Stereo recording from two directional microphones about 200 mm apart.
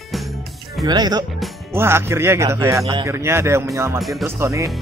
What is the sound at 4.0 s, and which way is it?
Speech, centre (ahead or behind).